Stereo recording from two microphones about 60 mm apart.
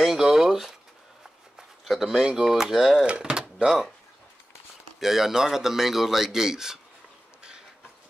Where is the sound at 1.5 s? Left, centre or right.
Centre.